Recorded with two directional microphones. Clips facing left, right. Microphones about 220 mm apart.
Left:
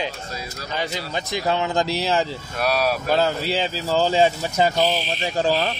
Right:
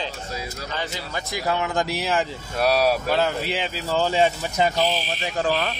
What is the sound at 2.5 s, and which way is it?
Speech, 35° right (ahead or behind).